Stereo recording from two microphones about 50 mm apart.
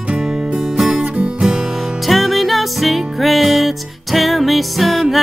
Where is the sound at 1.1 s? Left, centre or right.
Centre.